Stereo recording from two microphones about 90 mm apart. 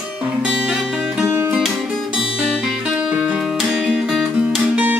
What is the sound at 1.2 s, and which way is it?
Music, 25° right (ahead or behind).